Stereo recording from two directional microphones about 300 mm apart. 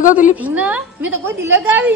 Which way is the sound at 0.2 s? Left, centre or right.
Centre.